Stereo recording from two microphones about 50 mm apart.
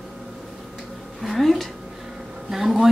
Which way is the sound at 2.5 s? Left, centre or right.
Centre.